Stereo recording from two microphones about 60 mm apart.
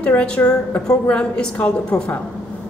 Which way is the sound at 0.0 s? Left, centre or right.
Centre.